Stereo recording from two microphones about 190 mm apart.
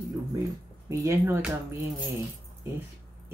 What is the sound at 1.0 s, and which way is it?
Speech, 15° right (ahead or behind).